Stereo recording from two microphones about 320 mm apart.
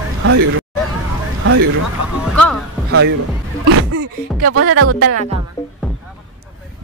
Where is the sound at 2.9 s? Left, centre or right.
Right.